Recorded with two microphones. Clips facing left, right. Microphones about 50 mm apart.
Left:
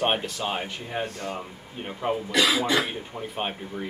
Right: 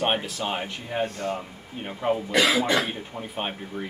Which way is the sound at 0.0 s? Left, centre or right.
Centre.